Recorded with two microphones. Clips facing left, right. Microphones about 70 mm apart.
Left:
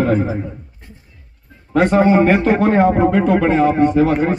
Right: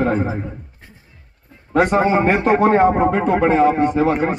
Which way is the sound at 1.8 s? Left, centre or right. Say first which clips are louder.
Left 3 dB; centre.